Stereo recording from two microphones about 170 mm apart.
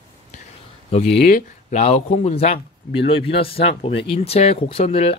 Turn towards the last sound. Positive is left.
turn(degrees=35)  # may be behind; listen again after turning